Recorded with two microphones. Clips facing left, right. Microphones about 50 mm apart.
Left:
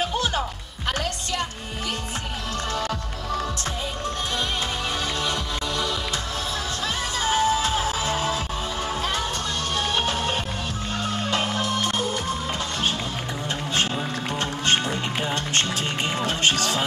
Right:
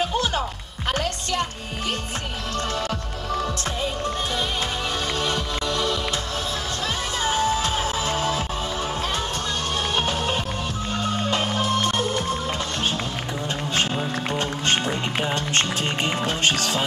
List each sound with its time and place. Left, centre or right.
7.3 s music: left
7.8 s music: centre
9.9 s music: right
13.7 s music: centre
15.5 s music: right